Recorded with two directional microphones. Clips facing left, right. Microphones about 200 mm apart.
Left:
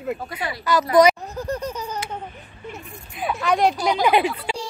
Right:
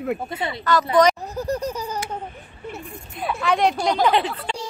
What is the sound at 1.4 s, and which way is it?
Laughter, 10° right (ahead or behind).